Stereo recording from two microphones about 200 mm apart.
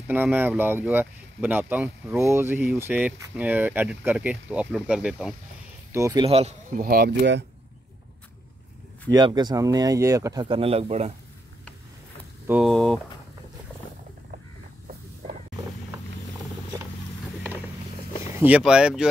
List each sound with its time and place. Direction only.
0.1 s speech: 10° right (ahead or behind)
5.9 s speech: 15° right (ahead or behind)
6.2 s speech: 30° right (ahead or behind)
6.8 s speech: 50° right (ahead or behind)
9.1 s speech: 20° right (ahead or behind)
12.4 s speech: centre (ahead or behind)
18.3 s speech: 5° right (ahead or behind)